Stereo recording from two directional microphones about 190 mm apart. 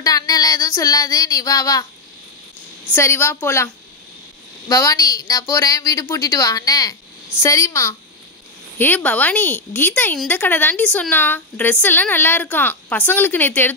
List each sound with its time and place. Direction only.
0.0 s a woman's voice: 20° left (ahead or behind)
2.9 s a woman's voice: 15° left (ahead or behind)